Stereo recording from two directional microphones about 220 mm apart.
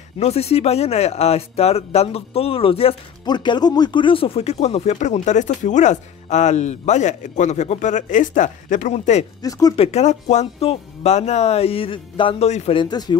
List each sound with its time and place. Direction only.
0.2 s speech: 30° left (ahead or behind)
9.4 s speech: 15° left (ahead or behind)
9.8 s speech: 30° left (ahead or behind)